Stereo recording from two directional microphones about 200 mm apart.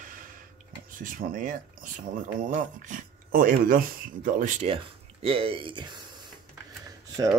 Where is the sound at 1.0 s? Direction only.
45° right (ahead or behind).